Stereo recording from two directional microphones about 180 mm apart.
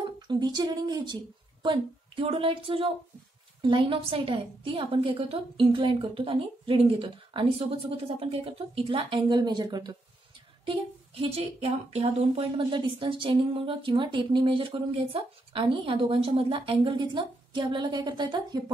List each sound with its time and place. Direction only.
0.0 s speech: 25° right (ahead or behind)